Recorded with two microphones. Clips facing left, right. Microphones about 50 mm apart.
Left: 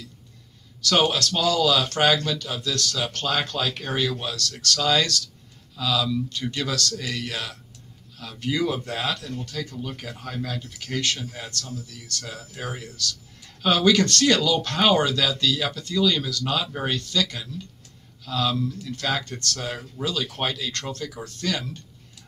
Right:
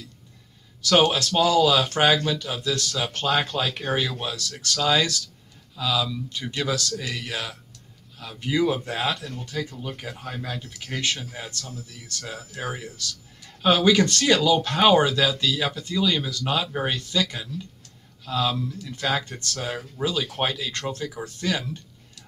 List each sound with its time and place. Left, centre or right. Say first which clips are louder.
1.1 s speech: right 3 dB; centre